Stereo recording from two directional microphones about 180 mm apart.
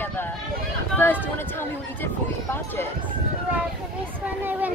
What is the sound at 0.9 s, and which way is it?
Speech, 10° left (ahead or behind).